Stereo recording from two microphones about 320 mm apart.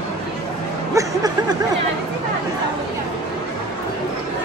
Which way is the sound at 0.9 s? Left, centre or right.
Centre.